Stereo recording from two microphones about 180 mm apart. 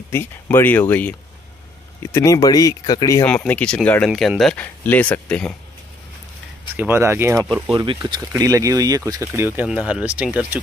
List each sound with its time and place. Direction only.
0.1 s speech: 15° left (ahead or behind)
2.1 s speech: 20° left (ahead or behind)
3.3 s speech: 10° left (ahead or behind)
6.8 s speech: 15° right (ahead or behind)
7.3 s speech: centre (ahead or behind)
7.7 s speech: 25° right (ahead or behind); by 10.6 s 5° right (ahead or behind)